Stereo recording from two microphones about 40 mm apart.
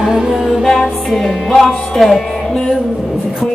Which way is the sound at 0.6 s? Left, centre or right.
Centre.